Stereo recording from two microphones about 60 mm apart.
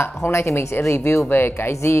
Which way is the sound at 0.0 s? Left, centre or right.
Left.